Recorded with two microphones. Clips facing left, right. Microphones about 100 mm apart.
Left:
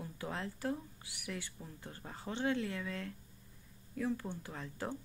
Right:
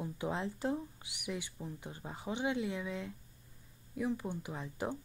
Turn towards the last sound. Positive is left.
turn(degrees=-15)  # may be behind; listen again after turning